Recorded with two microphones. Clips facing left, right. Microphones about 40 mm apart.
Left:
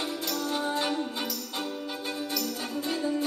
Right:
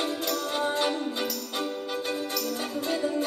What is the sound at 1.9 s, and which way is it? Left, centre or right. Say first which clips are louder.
Music: right 3 dB; right.